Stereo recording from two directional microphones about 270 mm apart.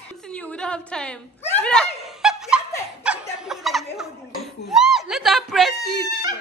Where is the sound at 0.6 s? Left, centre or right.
Centre.